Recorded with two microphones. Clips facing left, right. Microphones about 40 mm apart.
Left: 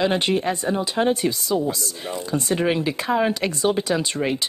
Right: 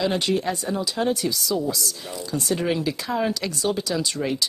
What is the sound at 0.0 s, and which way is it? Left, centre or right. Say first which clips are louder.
Speech: left 2 dB; left.